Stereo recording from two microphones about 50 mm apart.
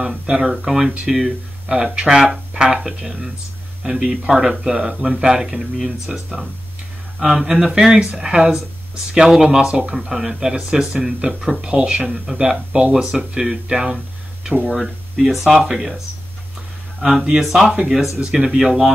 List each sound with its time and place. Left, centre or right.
0.0 s speech: centre
7.2 s speech: centre
12.7 s speech: right
13.1 s speech: centre
15.6 s speech: centre
17.2 s speech: centre